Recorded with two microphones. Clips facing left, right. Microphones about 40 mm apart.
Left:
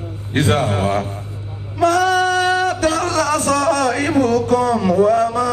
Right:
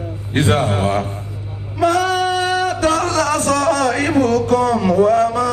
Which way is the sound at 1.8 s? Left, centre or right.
Centre.